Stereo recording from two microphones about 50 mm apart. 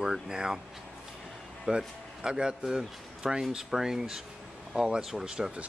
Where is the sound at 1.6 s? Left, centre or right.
Centre.